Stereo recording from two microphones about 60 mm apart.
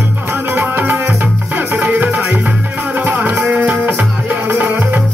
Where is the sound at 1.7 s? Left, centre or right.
Right.